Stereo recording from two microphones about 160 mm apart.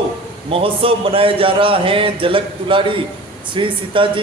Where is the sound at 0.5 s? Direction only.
35° right (ahead or behind).